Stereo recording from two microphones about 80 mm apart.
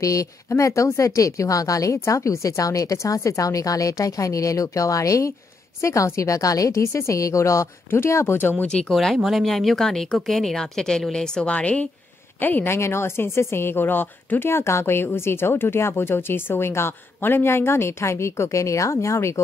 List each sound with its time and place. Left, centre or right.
0.0 s speech: left
8.6 s speech: centre
8.9 s speech: centre; by 19.4 s left